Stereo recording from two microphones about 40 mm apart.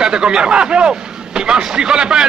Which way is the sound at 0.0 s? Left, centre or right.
Right.